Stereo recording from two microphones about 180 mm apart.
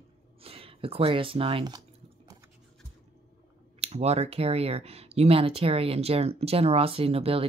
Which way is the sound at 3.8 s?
35° right (ahead or behind).